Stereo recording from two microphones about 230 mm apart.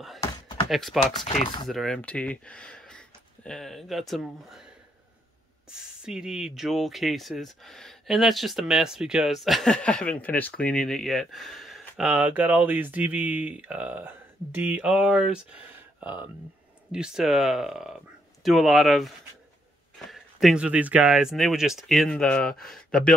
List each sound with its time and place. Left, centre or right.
0.2 s a sound: centre
0.7 s speech: centre
1.1 s speech: left
1.7 s speech: centre
5.7 s speech: centre